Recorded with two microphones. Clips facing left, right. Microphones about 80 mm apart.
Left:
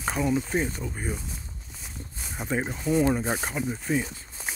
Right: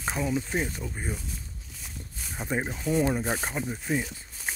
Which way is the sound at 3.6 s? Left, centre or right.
Right.